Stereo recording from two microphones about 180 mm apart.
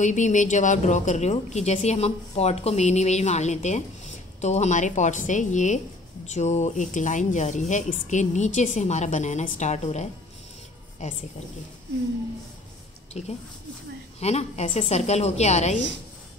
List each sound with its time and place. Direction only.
0.0 s a woman's voice: 45° left (ahead or behind)
14.2 s a woman's voice: 35° left (ahead or behind)